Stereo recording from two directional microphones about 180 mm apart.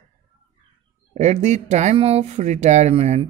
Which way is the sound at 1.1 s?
40° right (ahead or behind).